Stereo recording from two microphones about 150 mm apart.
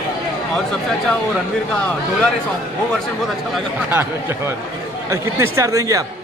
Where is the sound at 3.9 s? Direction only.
15° right (ahead or behind).